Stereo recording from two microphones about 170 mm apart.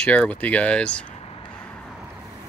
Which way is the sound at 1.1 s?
35° left (ahead or behind).